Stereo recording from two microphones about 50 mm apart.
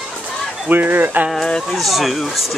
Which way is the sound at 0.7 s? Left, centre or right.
Right.